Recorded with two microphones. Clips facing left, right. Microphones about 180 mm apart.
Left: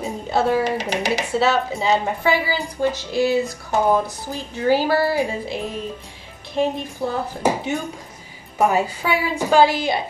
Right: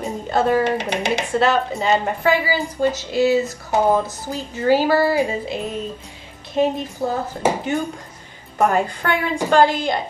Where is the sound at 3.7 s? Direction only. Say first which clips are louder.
Right 1 dB; 20° right (ahead or behind).